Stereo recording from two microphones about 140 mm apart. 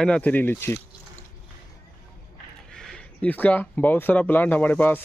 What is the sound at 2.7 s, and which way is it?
Speech, 5° left (ahead or behind).